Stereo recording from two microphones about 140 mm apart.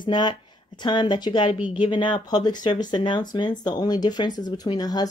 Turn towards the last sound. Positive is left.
turn(degrees=30)  # may be behind; listen again after turning